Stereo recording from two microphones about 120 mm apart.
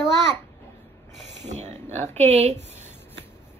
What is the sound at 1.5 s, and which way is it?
Speech, 70° right (ahead or behind).